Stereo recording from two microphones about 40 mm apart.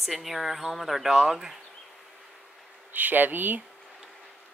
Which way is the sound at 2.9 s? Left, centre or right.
Right.